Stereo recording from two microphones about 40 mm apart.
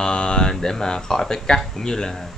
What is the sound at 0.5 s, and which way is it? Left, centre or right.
Speech, centre.